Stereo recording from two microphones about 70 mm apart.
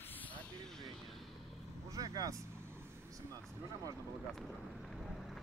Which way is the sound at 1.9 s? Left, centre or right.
Right.